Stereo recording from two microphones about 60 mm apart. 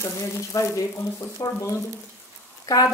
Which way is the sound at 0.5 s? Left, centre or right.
Left.